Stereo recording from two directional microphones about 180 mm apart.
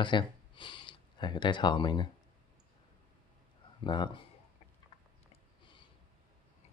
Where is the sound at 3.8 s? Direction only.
25° left (ahead or behind).